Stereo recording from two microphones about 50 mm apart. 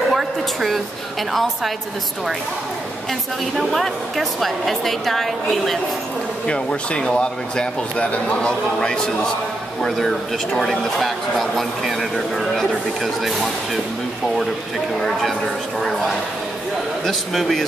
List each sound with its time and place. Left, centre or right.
0.1 s a sound: centre
1.3 s speech: centre
3.1 s speech: centre
6.4 s a man's voice: left; by 13.5 s centre
15.0 s speech: centre